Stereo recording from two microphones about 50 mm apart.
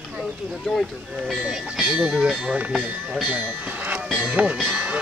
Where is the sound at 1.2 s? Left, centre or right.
Centre.